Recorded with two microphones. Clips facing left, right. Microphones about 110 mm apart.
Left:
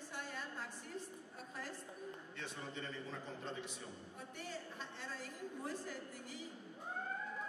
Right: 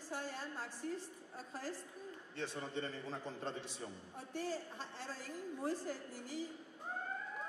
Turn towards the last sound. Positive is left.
turn(degrees=-35)  # may be behind; listen again after turning